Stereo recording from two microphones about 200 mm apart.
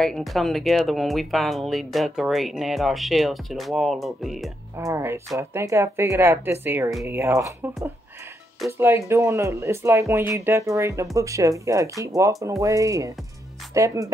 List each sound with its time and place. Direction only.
0.0 s speech: centre (ahead or behind)
4.7 s speech: 15° right (ahead or behind)
6.9 s speech: centre (ahead or behind)
7.2 s speech: 15° right (ahead or behind)